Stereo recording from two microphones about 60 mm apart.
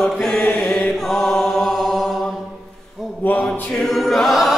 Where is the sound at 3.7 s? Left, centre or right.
Centre.